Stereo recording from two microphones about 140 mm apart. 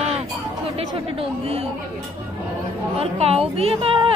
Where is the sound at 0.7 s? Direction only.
45° right (ahead or behind).